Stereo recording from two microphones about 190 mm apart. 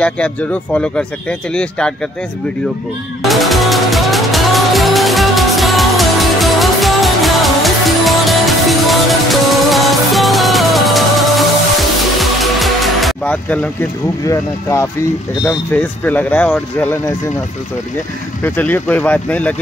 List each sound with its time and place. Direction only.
0.0 s speech: 5° left (ahead or behind)
3.2 s music: centre (ahead or behind)
14.2 s speech: 15° left (ahead or behind)
18.4 s speech: 10° left (ahead or behind)